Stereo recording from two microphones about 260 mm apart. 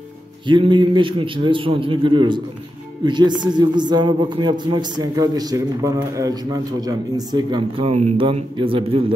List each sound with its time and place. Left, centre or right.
0.5 s a man's voice: centre